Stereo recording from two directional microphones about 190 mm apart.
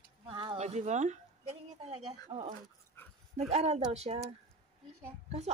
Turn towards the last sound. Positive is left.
turn(degrees=-35)  # may be behind; listen again after turning